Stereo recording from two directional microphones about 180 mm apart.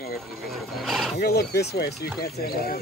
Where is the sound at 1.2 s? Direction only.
60° left (ahead or behind).